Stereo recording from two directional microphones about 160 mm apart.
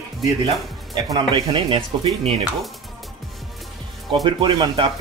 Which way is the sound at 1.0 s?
30° right (ahead or behind).